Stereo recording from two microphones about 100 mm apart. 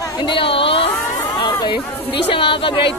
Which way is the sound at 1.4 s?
50° left (ahead or behind).